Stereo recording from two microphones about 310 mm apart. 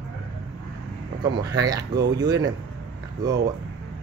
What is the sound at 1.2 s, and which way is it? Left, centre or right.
Speech, centre.